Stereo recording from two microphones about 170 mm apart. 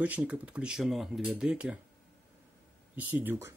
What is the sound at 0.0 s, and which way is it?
Speech, 10° right (ahead or behind).